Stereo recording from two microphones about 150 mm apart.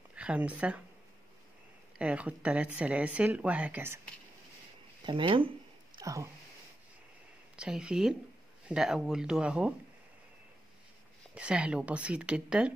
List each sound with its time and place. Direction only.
0.1 s speech: 10° right (ahead or behind)
2.0 s speech: 10° right (ahead or behind)
5.0 s speech: 35° right (ahead or behind)
5.9 s speech: 20° right (ahead or behind)
7.5 s speech: 5° right (ahead or behind)
11.3 s speech: 5° right (ahead or behind)